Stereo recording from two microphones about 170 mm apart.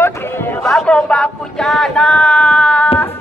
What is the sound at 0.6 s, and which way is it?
Speech, 5° left (ahead or behind).